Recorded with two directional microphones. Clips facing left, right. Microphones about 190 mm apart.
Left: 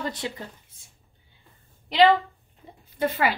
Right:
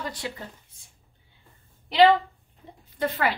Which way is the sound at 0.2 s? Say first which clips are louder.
Left 2 dB; 25° left (ahead or behind).